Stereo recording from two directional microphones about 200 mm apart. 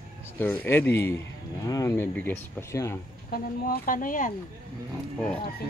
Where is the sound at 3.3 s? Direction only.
45° left (ahead or behind).